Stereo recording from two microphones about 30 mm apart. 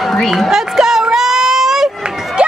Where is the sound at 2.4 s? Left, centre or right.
Right.